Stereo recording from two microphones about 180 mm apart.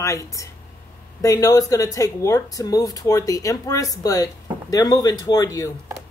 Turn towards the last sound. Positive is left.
turn(degrees=20)  # may be behind; listen again after turning